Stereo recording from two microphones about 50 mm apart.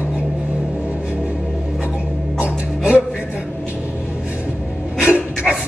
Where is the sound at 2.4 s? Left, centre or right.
Right.